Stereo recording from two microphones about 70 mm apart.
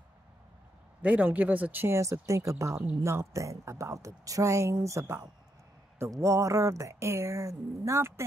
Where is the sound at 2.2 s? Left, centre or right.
Right.